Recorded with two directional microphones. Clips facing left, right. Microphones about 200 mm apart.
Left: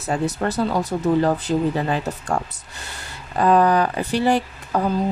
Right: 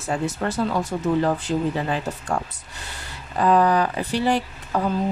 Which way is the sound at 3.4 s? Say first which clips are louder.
Left 2 dB; 50° left (ahead or behind).